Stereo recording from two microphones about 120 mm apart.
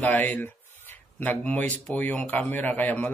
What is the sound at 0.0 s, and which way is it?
Speech, 15° left (ahead or behind).